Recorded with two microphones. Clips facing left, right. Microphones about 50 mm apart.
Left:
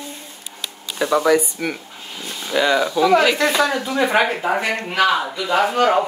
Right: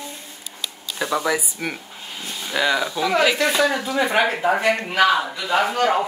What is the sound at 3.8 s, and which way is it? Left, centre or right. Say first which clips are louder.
Speech: left 2 dB; left.